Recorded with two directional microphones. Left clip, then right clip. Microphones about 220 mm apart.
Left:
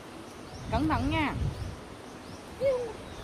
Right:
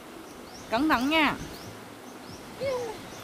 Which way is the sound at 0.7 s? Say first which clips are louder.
Right 5 dB; 25° right (ahead or behind).